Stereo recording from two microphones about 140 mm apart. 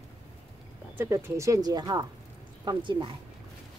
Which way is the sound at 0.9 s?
20° right (ahead or behind).